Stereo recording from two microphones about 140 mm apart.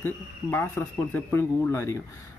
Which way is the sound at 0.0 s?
15° left (ahead or behind).